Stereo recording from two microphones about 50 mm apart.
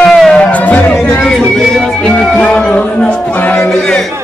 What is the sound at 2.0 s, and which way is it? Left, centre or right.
Music, centre.